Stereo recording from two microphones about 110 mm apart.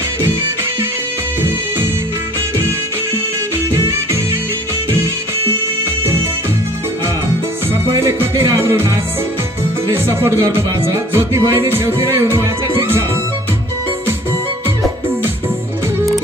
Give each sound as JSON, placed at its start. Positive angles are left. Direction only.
{"t": 3.7, "sound": "music", "side_deg": -30}
{"t": 7.9, "sound": "music", "side_deg": -25}